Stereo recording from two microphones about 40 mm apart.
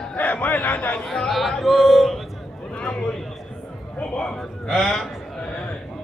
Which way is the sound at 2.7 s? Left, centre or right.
Left.